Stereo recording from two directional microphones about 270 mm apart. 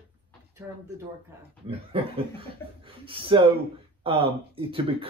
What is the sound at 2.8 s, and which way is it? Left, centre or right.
Speech, centre.